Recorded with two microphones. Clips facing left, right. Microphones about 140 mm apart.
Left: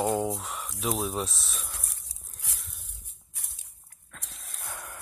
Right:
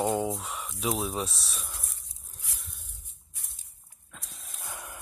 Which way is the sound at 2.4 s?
90° left.